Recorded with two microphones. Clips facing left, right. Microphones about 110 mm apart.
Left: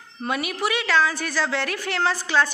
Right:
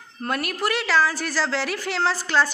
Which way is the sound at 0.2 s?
Centre (ahead or behind).